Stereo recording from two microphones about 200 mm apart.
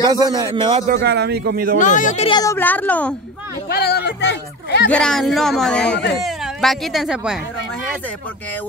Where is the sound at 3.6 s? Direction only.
50° left (ahead or behind).